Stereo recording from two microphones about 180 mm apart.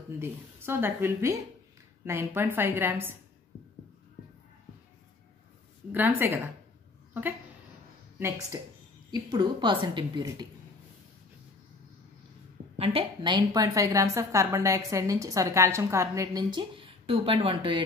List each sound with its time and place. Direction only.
0.2 s speech: 15° right (ahead or behind)
5.9 s speech: 10° right (ahead or behind)
8.5 s a woman's voice: 20° right (ahead or behind)
12.7 s a woman's voice: 30° right (ahead or behind)